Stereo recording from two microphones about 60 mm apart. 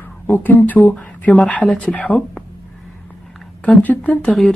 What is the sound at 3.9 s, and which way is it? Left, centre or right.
Speech, left.